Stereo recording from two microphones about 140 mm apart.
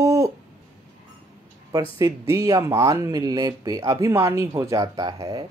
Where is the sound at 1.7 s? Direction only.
25° right (ahead or behind).